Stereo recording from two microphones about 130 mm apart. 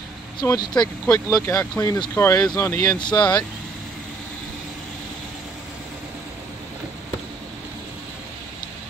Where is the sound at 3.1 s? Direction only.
10° left (ahead or behind).